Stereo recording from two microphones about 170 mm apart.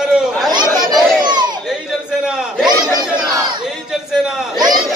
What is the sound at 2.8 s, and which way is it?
Battle cry, 5° right (ahead or behind).